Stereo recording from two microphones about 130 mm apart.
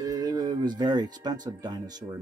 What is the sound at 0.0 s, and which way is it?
Speech, 30° right (ahead or behind).